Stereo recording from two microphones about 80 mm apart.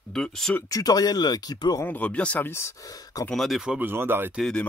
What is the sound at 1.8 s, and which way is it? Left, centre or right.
Speech, left.